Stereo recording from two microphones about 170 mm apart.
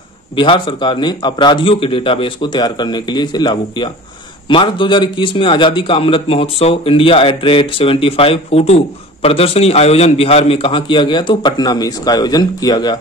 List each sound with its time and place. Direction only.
0.4 s a man's voice: 30° left (ahead or behind)